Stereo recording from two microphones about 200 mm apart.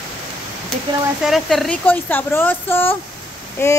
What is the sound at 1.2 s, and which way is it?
Speech, centre (ahead or behind).